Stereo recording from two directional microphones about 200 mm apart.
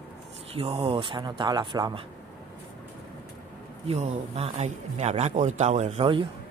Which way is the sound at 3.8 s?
35° right (ahead or behind).